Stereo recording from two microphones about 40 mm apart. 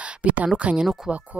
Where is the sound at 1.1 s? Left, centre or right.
Centre.